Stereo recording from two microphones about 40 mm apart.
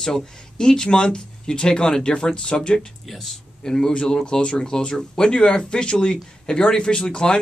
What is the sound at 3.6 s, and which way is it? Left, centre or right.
Speech, centre.